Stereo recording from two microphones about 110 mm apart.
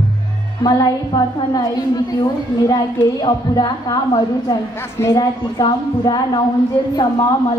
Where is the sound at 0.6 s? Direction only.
40° left (ahead or behind).